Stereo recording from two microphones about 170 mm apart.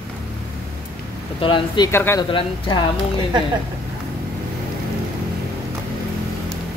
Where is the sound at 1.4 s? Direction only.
30° left (ahead or behind).